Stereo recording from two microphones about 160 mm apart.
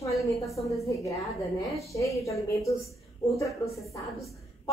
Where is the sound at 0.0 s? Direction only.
20° left (ahead or behind).